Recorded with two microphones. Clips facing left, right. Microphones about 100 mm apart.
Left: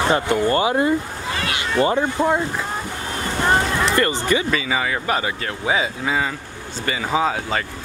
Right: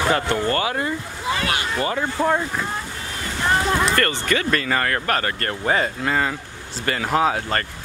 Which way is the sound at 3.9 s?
15° left (ahead or behind).